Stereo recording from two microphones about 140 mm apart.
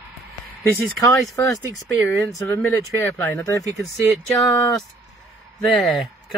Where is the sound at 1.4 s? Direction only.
25° left (ahead or behind).